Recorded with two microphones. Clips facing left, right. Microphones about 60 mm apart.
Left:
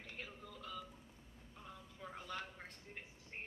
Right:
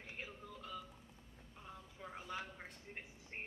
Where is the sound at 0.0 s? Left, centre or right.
Centre.